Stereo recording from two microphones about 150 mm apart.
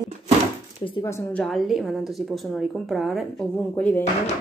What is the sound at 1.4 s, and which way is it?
Speech, centre (ahead or behind).